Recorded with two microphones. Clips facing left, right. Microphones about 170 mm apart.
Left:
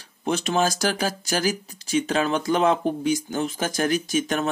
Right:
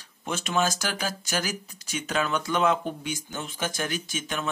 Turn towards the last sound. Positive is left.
turn(degrees=40)  # may be behind; listen again after turning